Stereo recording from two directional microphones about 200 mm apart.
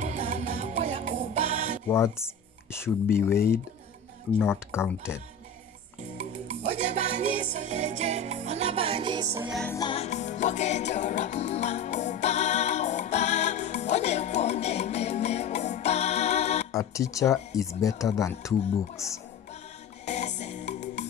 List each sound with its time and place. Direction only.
0.0 s music: 35° right (ahead or behind)
1.9 s speech: 15° left (ahead or behind)
4.6 s speech: 10° left (ahead or behind)
6.1 s music: 35° right (ahead or behind); by 9.5 s 15° right (ahead or behind)
9.5 s music: 5° left (ahead or behind)
9.8 s music: 25° left (ahead or behind)
16.7 s speech: 15° left (ahead or behind)
20.1 s music: 35° left (ahead or behind)